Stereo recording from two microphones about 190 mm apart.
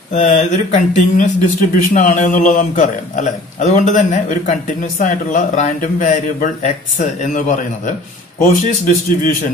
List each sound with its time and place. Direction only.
0.1 s a man's voice: 40° left (ahead or behind)